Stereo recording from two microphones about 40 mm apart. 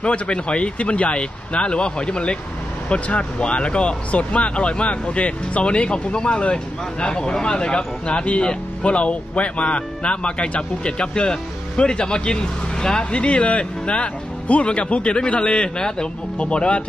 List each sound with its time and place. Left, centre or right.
0.0 s speech: left